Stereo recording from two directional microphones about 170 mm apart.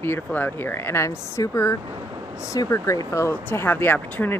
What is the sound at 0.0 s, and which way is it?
Speech, 10° left (ahead or behind).